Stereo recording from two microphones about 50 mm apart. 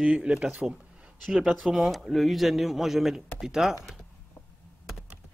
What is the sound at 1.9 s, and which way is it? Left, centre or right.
A man's voice, centre.